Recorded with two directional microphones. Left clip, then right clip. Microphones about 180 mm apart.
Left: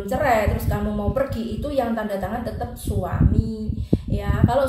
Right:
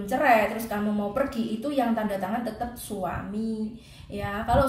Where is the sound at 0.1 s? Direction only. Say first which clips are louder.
Left 1 dB; 5° right (ahead or behind).